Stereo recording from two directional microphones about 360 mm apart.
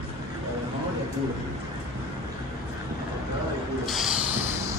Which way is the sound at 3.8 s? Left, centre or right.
Centre.